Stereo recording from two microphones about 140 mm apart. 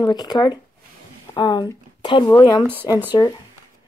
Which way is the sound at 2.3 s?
30° left (ahead or behind).